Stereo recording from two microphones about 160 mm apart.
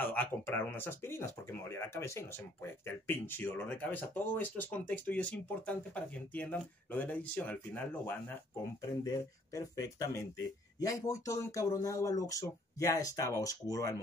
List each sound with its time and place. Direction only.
0.0 s speech: 10° left (ahead or behind)